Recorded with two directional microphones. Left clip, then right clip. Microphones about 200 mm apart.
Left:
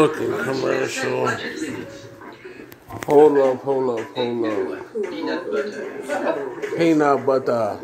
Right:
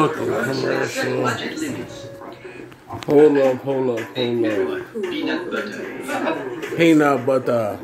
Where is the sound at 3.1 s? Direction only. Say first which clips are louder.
Left 1 dB; 10° right (ahead or behind).